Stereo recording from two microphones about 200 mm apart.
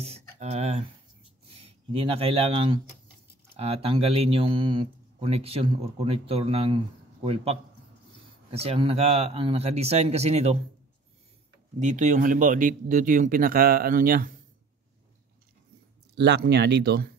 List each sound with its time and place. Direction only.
0.0 s a sound: 30° right (ahead or behind)
1.5 s speech: 25° right (ahead or behind)
8.5 s speech: 30° right (ahead or behind)
11.8 s speech: 35° right (ahead or behind)
16.2 s speech: 60° right (ahead or behind)